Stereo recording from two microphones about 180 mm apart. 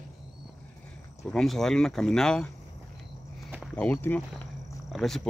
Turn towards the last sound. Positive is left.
turn(degrees=0)  # may be behind; listen again after turning